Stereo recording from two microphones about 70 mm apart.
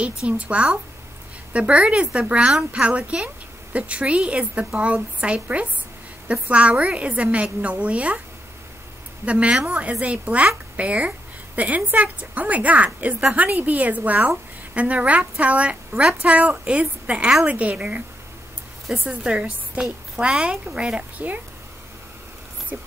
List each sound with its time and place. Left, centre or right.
0.3 s a woman's voice: centre
9.2 s a woman's voice: centre
21.2 s a woman's voice: right
22.7 s a woman's voice: right